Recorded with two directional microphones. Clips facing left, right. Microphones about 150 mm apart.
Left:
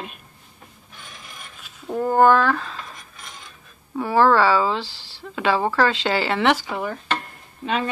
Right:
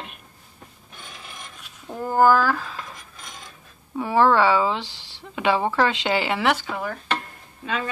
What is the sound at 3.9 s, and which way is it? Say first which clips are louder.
Speech: left 1 dB; 15° right (ahead or behind).